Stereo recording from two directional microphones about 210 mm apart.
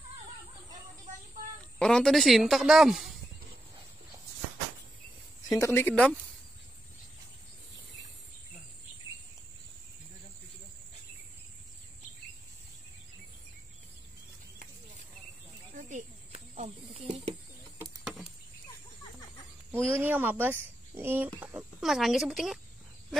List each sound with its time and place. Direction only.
1.8 s speech: centre (ahead or behind)
5.6 s speech: 10° left (ahead or behind)
15.7 s snake: 30° right (ahead or behind)
18.0 s a sound: 5° right (ahead or behind)
19.7 s a sound: 10° right (ahead or behind)
21.4 s speech: 10° right (ahead or behind)